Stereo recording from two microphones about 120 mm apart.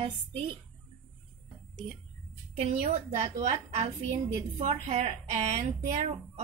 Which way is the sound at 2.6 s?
70° right (ahead or behind).